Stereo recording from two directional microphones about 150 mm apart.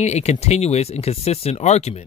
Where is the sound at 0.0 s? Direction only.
50° left (ahead or behind).